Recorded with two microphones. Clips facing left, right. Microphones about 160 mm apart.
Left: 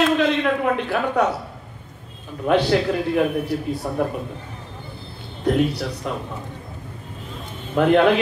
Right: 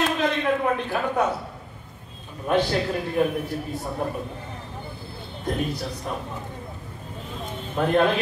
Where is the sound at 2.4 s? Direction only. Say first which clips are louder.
Left 4 dB; 65° left (ahead or behind).